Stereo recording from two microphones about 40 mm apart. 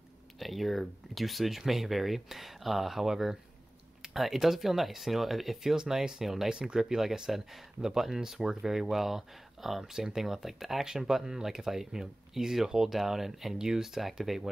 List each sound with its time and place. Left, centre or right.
0.4 s speech: centre